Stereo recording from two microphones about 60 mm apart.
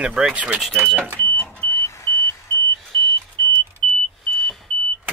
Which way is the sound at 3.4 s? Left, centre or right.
Left.